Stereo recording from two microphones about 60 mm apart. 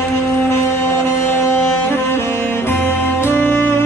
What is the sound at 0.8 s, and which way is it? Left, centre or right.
Music, left.